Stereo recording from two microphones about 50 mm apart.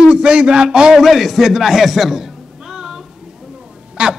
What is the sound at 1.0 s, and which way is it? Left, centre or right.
A man's voice, centre.